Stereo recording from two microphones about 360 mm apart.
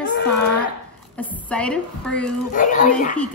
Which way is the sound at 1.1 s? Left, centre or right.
Centre.